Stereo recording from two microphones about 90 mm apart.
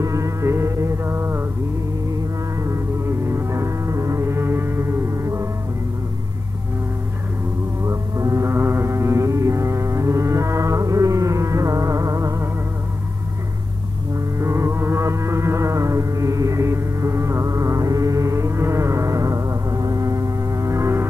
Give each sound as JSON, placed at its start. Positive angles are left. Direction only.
{"t": 0.0, "sound": "music", "side_deg": -35}
{"t": 2.6, "sound": "music", "side_deg": -30}
{"t": 7.8, "sound": "music", "side_deg": -35}
{"t": 14.4, "sound": "music", "side_deg": -30}